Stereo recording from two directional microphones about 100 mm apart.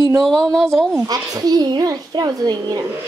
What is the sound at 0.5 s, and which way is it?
Speech, 5° left (ahead or behind).